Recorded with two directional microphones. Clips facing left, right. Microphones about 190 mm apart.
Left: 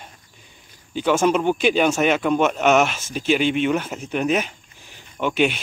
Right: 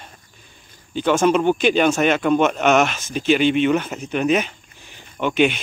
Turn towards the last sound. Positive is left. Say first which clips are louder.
# right 2 dB
turn(degrees=5)  # may be behind; listen again after turning